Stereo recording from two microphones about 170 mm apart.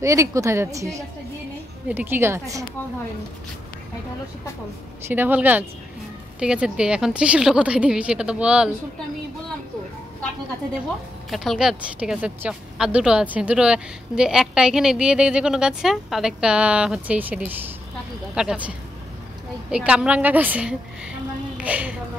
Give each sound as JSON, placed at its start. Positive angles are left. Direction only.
{"t": 0.0, "sound": "a woman's voice", "side_deg": -20}
{"t": 5.0, "sound": "a woman's voice", "side_deg": -10}
{"t": 11.2, "sound": "a woman's voice", "side_deg": 0}